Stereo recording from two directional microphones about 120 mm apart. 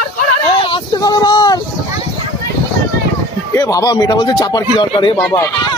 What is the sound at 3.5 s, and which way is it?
A man's voice, 30° left (ahead or behind).